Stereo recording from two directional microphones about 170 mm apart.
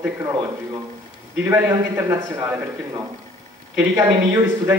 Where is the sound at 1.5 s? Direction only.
15° right (ahead or behind).